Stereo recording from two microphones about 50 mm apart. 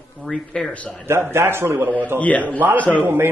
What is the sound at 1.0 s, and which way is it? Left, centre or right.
Speech, right.